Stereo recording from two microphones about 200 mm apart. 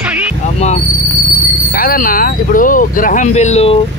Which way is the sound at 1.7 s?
45° left (ahead or behind).